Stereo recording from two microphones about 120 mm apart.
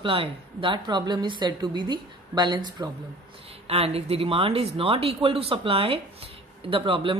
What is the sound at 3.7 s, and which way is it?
A woman's voice, 55° right (ahead or behind).